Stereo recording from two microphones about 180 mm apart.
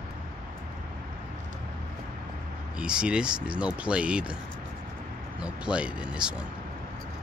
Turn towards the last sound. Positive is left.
turn(degrees=-5)  # may be behind; listen again after turning